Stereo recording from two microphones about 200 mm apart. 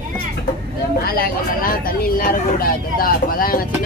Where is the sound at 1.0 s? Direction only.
50° left (ahead or behind).